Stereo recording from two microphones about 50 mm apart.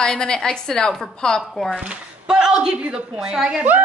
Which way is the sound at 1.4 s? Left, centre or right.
Centre.